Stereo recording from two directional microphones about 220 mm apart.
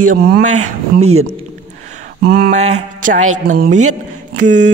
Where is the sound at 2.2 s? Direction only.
45° right (ahead or behind).